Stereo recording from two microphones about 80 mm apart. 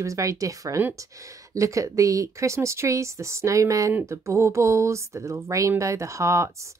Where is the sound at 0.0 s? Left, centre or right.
Right.